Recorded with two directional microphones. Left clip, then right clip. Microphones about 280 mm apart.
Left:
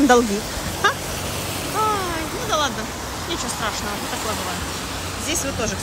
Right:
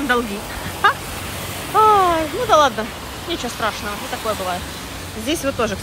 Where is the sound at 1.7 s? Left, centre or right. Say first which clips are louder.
Right 10 dB; centre.